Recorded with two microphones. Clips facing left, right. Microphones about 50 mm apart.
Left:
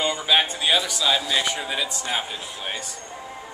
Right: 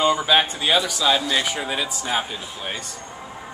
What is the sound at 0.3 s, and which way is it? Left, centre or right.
A man's voice, centre.